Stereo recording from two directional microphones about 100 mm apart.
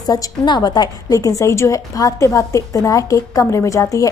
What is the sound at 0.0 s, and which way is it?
A woman's voice, 40° left (ahead or behind).